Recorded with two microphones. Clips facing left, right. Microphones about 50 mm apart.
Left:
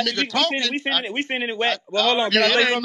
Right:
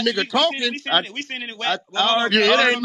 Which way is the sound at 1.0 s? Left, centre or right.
Left.